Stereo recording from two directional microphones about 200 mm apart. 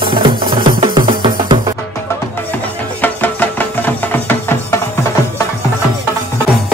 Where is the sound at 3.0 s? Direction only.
10° left (ahead or behind).